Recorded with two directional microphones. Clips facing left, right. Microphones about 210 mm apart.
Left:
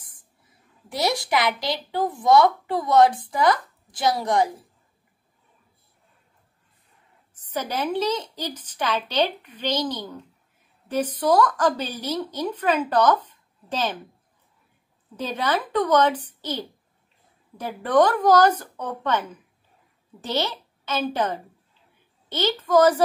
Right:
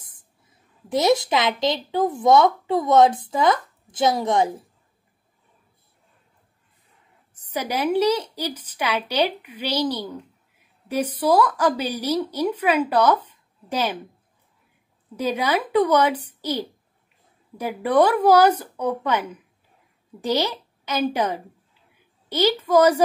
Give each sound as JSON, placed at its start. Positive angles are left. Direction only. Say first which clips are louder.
{"t": 0.9, "sound": "a woman's voice", "louder": "right 5 dB", "side_deg": -20}
{"t": 7.3, "sound": "a woman's voice", "louder": "right 2 dB", "side_deg": -10}
{"t": 15.1, "sound": "a woman's voice", "louder": "right 3 dB", "side_deg": -10}